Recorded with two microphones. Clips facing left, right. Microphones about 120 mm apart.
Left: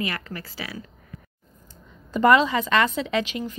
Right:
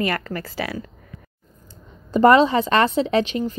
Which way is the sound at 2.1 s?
30° right (ahead or behind).